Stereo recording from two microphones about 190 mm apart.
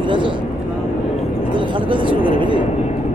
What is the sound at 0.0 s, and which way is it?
Vehicle, 25° right (ahead or behind).